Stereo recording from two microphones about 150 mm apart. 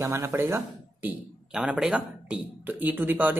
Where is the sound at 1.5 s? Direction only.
5° right (ahead or behind).